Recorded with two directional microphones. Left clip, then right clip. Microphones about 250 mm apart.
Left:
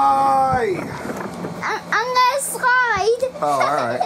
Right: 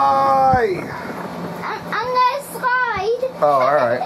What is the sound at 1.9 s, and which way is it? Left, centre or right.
Child singing, left.